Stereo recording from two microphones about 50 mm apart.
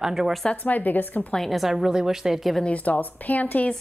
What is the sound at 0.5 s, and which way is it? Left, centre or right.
Speech, left.